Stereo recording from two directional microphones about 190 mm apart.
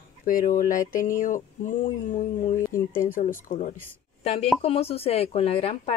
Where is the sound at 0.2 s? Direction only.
45° left (ahead or behind).